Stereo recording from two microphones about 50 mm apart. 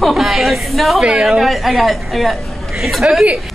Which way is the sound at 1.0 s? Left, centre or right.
Centre.